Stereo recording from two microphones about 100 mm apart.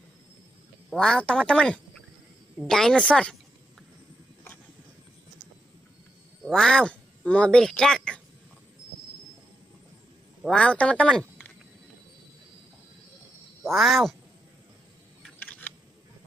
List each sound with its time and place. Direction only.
0.8 s speech: 5° left (ahead or behind)
6.5 s speech: 5° left (ahead or behind)
10.5 s speech: 10° left (ahead or behind)
13.6 s speech: centre (ahead or behind)
15.3 s camera: 15° left (ahead or behind)